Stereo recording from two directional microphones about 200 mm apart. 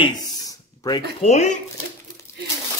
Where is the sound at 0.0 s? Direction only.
20° left (ahead or behind).